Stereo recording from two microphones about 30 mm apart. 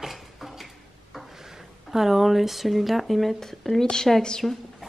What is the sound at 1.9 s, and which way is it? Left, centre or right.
Speech, centre.